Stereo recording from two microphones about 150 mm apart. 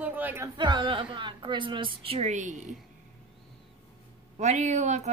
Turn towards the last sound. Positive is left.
turn(degrees=-50)  # may be behind; listen again after turning